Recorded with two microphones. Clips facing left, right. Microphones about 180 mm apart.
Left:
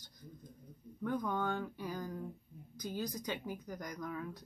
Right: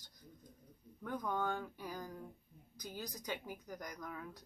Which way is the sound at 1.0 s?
10° right (ahead or behind).